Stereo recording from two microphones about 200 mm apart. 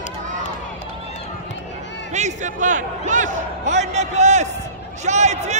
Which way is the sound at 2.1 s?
35° right (ahead or behind).